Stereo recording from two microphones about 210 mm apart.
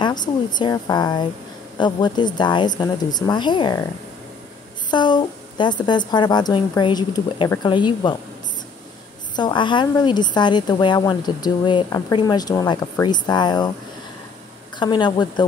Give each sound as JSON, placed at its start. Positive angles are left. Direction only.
{"t": 0.0, "sound": "a woman's voice", "side_deg": 20}
{"t": 4.9, "sound": "a woman's voice", "side_deg": 20}
{"t": 9.3, "sound": "a woman's voice", "side_deg": 20}
{"t": 14.8, "sound": "a woman's voice", "side_deg": 20}